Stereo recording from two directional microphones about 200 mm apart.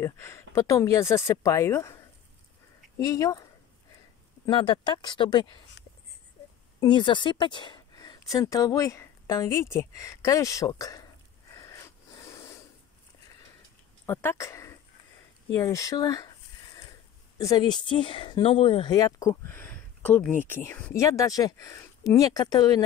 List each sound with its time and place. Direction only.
0.0 s speech: 15° left (ahead or behind)
3.0 s speech: 15° left (ahead or behind)
4.5 s speech: 25° left (ahead or behind)
6.8 s a woman's voice: 25° left (ahead or behind)
11.5 s a sound: 15° left (ahead or behind)
14.0 s speech: 10° left (ahead or behind)
17.4 s speech: 20° left (ahead or behind)